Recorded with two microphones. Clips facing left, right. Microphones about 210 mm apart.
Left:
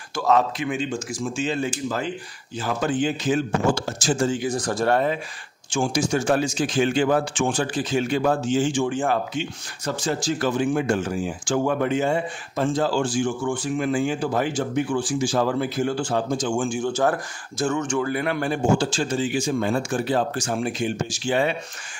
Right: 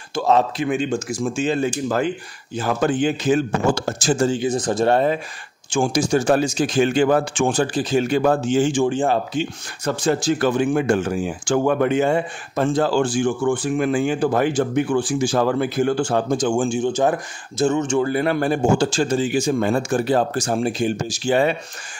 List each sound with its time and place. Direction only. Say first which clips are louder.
0.1 s speech: right 2 dB; 25° right (ahead or behind)
1.4 s a man's voice: right 4 dB; 45° right (ahead or behind)
4.3 s speech: right 4 dB; 25° right (ahead or behind)
5.7 s speech: right 4 dB; 45° right (ahead or behind)
8.2 s a man's voice: right 3 dB; 55° right (ahead or behind)
8.8 s speech: right 4 dB; 30° right (ahead or behind)
9.8 s speech: right 5 dB; 55° right (ahead or behind)
16.5 s speech: right 4 dB; 25° right (ahead or behind); by 21.5 s 40° right (ahead or behind)